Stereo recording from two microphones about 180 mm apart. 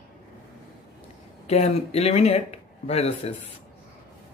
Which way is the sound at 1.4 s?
35° left (ahead or behind).